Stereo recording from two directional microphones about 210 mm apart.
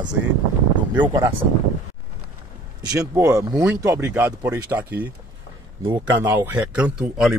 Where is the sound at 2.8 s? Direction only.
15° right (ahead or behind).